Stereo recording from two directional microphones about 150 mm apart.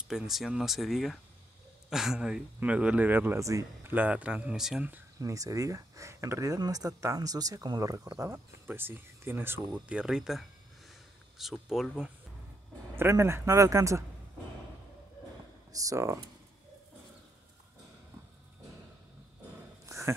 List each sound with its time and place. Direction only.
0.1 s speech: centre (ahead or behind)
5.3 s speech: 25° right (ahead or behind); by 12.1 s 5° right (ahead or behind)
12.9 s speech: 15° right (ahead or behind)
15.7 s speech: 20° right (ahead or behind)
19.9 s a sound: 20° right (ahead or behind)